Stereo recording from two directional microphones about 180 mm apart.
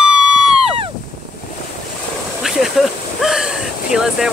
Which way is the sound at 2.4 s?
Centre (ahead or behind).